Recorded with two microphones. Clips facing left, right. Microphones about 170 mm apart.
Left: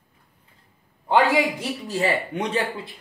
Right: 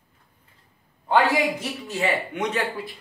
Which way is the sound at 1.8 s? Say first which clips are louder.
Left 1 dB; 35° left (ahead or behind).